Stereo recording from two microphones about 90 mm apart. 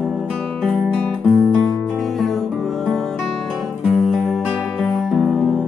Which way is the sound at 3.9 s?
Centre (ahead or behind).